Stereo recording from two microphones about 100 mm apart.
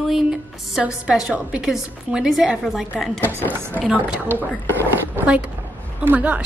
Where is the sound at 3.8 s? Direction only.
10° right (ahead or behind).